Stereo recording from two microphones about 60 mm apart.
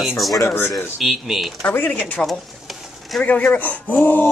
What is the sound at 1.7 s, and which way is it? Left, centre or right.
Speech, left.